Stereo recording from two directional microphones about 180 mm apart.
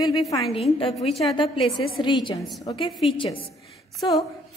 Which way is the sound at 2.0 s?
25° left (ahead or behind).